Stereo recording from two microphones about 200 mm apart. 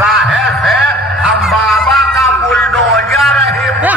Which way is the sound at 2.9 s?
Centre (ahead or behind).